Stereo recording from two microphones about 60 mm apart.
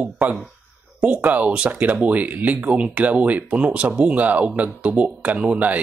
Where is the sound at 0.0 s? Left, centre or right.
Right.